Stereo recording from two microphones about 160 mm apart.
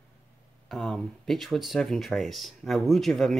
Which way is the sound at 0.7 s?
Centre (ahead or behind).